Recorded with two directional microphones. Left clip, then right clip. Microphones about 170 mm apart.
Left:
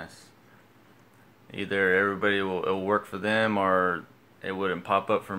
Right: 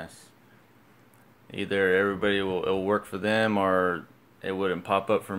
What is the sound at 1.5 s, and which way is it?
Speech, 25° right (ahead or behind).